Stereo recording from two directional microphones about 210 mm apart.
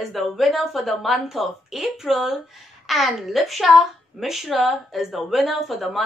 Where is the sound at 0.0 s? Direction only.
Centre (ahead or behind).